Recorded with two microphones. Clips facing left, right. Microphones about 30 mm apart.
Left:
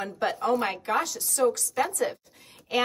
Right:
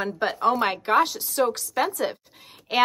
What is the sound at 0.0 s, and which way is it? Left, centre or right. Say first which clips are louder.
Speech: right 5 dB; right.